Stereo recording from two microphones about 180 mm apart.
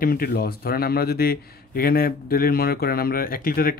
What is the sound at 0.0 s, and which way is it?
A man's voice, 55° left (ahead or behind).